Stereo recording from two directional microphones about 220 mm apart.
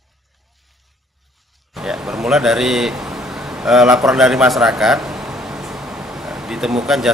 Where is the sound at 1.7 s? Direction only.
Centre (ahead or behind).